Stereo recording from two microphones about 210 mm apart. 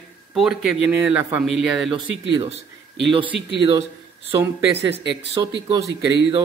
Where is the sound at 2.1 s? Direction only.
65° right (ahead or behind).